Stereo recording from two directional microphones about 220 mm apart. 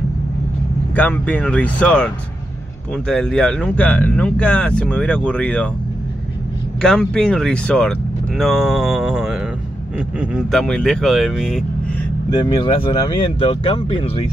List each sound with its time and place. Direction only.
0.9 s speech: 5° left (ahead or behind)
6.8 s speech: 5° left (ahead or behind)
12.3 s speech: 20° left (ahead or behind)